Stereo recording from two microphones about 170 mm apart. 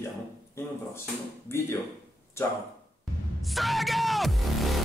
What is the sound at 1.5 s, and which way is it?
Speech, 15° left (ahead or behind).